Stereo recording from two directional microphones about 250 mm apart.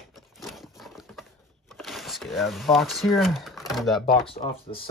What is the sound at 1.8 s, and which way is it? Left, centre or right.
Speech, centre.